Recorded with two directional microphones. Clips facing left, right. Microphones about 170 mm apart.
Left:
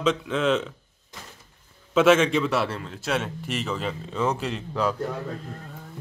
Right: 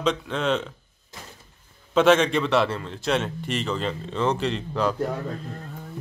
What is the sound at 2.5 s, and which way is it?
A man's voice, 5° left (ahead or behind).